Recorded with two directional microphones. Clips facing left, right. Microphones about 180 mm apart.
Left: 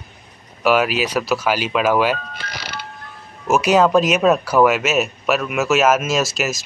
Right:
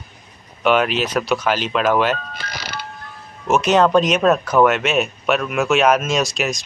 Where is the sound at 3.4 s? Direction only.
5° left (ahead or behind).